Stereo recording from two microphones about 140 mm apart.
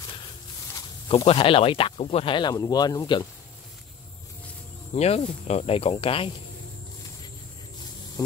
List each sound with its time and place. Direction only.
1.0 s speech: 40° left (ahead or behind)
2.5 s speech: 25° left (ahead or behind)
4.9 s speech: 50° left (ahead or behind)